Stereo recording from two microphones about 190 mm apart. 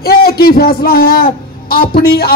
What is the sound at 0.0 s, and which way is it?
A man's voice, 55° left (ahead or behind).